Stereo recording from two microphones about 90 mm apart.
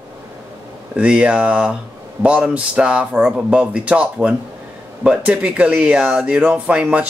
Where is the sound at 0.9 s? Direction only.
10° right (ahead or behind).